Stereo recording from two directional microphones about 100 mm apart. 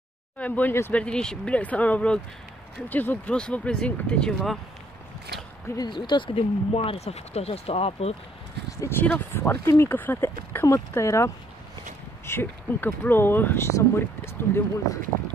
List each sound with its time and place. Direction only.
0.4 s speech: 15° left (ahead or behind)
1.0 s speech: 10° left (ahead or behind)
5.8 s speech: 50° left (ahead or behind); by 8.1 s 85° left
8.7 s speech: 25° left (ahead or behind)
9.0 s speech: 15° left (ahead or behind)